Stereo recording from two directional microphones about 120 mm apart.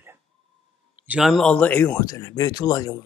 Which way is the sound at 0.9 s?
15° right (ahead or behind).